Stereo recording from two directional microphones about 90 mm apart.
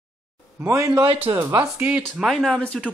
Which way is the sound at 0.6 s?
30° right (ahead or behind).